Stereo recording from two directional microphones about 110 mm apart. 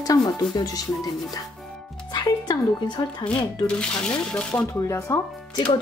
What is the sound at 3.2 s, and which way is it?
Speech, 10° left (ahead or behind).